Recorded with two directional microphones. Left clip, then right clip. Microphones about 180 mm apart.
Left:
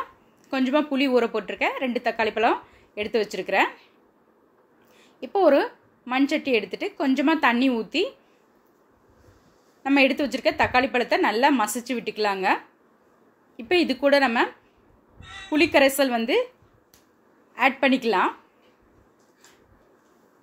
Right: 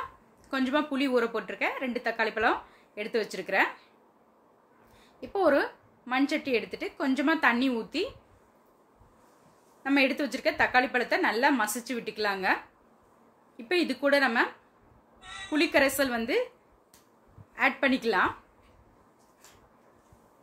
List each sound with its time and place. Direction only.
0.5 s a woman's voice: 15° left (ahead or behind)
5.2 s a woman's voice: 20° left (ahead or behind)
9.8 s a woman's voice: 20° left (ahead or behind)
13.6 s a woman's voice: 20° left (ahead or behind)
15.5 s a woman's voice: 20° left (ahead or behind)
17.6 s a woman's voice: 20° left (ahead or behind)